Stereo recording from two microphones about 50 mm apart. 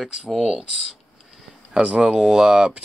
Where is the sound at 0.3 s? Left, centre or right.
Centre.